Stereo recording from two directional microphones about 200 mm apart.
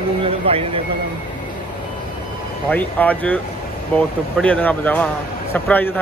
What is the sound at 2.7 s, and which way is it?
A man's voice, 10° left (ahead or behind).